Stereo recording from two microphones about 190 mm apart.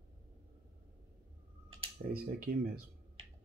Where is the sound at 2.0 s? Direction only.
50° right (ahead or behind).